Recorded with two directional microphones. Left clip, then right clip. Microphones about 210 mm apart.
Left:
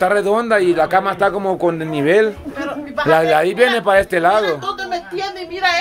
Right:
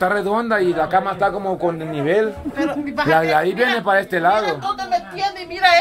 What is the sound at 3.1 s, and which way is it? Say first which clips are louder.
Speech: left 3 dB; 15° left (ahead or behind).